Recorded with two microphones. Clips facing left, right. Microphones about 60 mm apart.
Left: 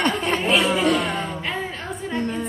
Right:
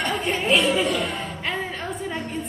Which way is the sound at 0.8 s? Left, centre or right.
Left.